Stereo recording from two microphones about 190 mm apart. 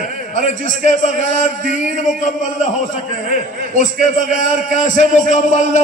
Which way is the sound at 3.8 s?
40° left (ahead or behind).